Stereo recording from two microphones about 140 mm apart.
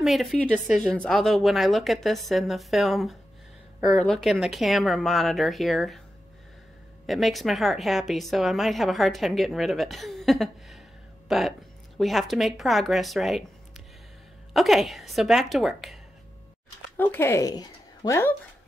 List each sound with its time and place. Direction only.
0.0 s speech: centre (ahead or behind)
7.1 s speech: centre (ahead or behind)
14.5 s speech: centre (ahead or behind)
16.9 s speech: 15° left (ahead or behind)